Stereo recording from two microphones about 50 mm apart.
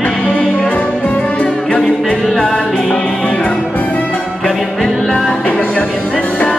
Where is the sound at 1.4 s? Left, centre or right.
Centre.